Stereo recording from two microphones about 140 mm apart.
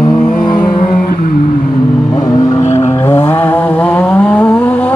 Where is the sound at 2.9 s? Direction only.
15° left (ahead or behind).